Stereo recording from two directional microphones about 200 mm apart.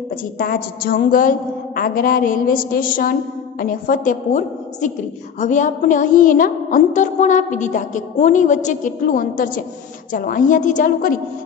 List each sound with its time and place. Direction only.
0.4 s a woman's voice: 45° left (ahead or behind)
5.4 s music: 40° left (ahead or behind)